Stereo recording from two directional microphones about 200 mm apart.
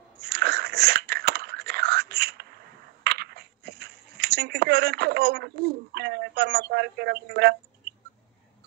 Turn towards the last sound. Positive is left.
turn(degrees=-55)  # may be behind; listen again after turning